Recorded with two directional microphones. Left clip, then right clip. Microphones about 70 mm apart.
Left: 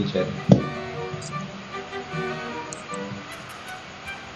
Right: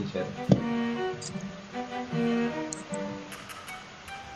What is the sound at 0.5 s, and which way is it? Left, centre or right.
Music, right.